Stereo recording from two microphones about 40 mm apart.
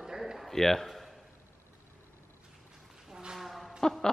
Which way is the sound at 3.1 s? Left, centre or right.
Centre.